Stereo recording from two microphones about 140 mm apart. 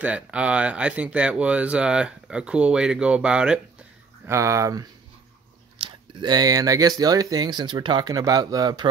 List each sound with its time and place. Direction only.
0.0 s speech: 10° right (ahead or behind)
4.3 s speech: 20° right (ahead or behind)
5.8 s speech: 35° right (ahead or behind)